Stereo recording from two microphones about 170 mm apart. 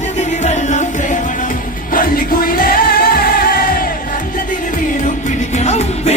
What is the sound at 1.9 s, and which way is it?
Music, 55° left (ahead or behind).